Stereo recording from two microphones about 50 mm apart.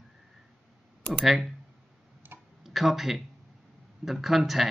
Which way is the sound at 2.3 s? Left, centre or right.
Right.